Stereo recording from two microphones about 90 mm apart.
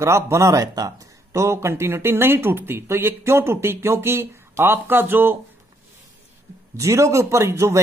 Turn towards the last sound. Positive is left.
turn(degrees=-35)  # may be behind; listen again after turning